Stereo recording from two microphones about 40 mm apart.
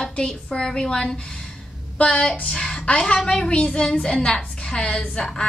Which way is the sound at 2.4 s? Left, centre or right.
Left.